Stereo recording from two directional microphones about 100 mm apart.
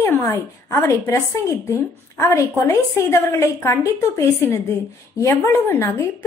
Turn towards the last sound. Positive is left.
turn(degrees=25)  # may be behind; listen again after turning